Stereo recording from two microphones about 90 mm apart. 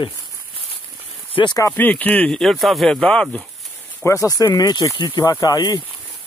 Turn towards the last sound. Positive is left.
turn(degrees=50)  # may be behind; listen again after turning